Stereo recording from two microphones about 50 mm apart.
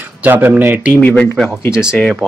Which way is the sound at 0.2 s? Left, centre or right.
Right.